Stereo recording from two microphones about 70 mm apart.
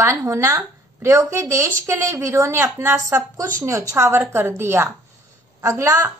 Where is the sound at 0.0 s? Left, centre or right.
Right.